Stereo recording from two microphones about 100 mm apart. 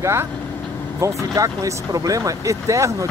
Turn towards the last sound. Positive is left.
turn(degrees=-30)  # may be behind; listen again after turning